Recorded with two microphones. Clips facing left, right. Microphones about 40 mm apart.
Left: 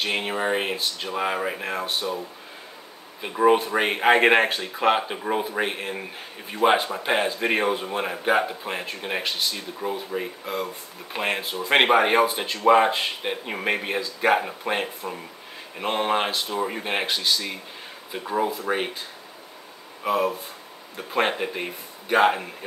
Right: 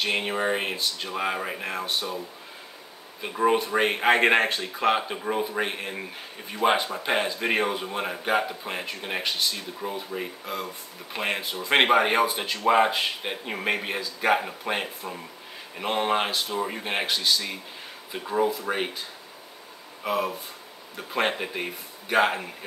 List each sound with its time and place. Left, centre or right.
0.0 s speech: centre
3.2 s a man's voice: centre
20.0 s a man's voice: centre